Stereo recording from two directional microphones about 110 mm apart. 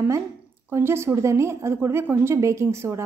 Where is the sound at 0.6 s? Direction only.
20° right (ahead or behind).